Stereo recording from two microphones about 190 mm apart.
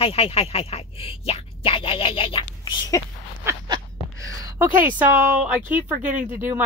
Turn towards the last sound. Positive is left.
turn(degrees=-10)  # may be behind; listen again after turning